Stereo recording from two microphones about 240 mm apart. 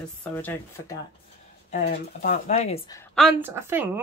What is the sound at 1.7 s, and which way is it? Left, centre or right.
Speech, left.